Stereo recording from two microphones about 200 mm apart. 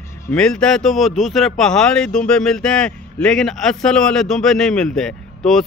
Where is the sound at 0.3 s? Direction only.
5° left (ahead or behind).